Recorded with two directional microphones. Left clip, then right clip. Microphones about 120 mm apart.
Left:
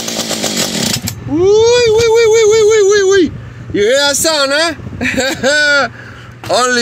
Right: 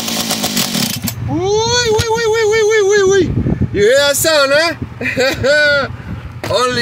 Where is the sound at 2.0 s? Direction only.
20° left (ahead or behind); by 3.9 s 40° left (ahead or behind).